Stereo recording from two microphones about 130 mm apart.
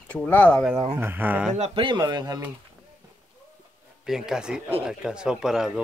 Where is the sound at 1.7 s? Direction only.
40° right (ahead or behind).